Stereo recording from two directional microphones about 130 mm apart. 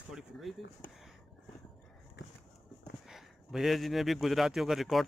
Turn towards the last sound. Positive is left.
turn(degrees=0)  # may be behind; listen again after turning